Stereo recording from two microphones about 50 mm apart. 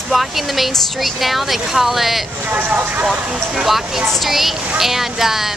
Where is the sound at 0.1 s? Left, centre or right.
Centre.